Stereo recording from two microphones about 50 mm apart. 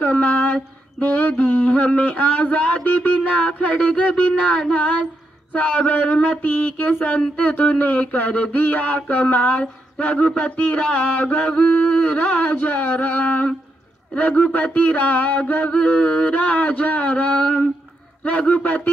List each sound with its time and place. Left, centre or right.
0.0 s mantra: left
1.9 s speech: left
6.4 s a sound: left
18.2 s speech: left